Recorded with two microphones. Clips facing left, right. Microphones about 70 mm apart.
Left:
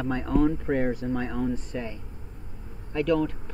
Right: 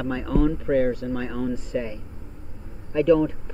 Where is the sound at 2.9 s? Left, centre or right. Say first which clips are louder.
Right 6 dB; centre.